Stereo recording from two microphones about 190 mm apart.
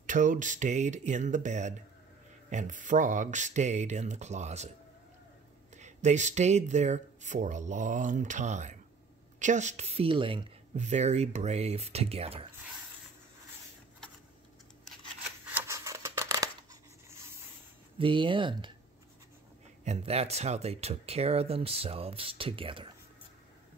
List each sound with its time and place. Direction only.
0.0 s speech: 40° right (ahead or behind)
5.8 s speech: 40° right (ahead or behind)
15.4 s scissors: 10° right (ahead or behind)
17.9 s speech: 25° right (ahead or behind)
19.8 s speech: 35° right (ahead or behind)